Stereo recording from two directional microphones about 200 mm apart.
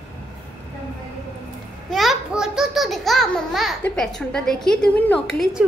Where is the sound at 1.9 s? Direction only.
Centre (ahead or behind).